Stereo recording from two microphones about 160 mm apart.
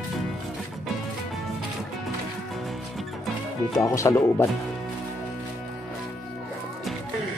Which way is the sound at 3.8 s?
20° left (ahead or behind).